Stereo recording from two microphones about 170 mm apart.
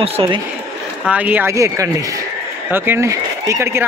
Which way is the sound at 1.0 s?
10° right (ahead or behind).